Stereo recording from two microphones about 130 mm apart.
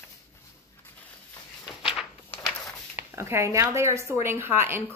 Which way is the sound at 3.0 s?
20° right (ahead or behind).